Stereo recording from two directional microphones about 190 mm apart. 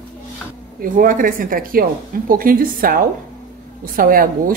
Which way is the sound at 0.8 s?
45° right (ahead or behind).